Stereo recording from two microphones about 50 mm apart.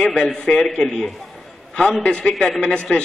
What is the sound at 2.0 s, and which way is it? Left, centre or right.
A man's voice, left.